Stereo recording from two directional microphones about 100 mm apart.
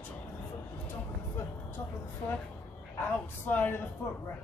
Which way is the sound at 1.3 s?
25° left (ahead or behind).